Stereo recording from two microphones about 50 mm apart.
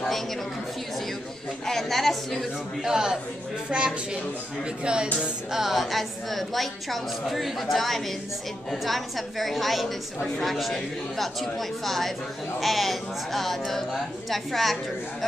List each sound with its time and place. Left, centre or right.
1.7 s a woman's voice: centre
2.8 s a man's voice: centre
5.5 s a woman's voice: centre